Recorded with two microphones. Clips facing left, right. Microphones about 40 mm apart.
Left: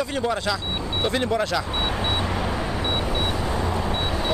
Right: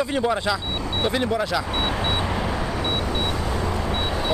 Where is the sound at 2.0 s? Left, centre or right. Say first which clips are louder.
Right 1 dB; centre.